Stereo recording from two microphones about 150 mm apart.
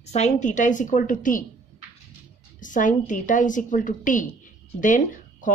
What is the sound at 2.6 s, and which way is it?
A woman's voice, 60° left (ahead or behind).